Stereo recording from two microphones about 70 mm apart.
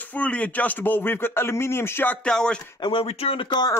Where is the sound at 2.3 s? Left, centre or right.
Centre.